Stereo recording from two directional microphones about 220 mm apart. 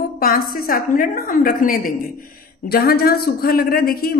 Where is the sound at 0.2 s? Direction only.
40° left (ahead or behind).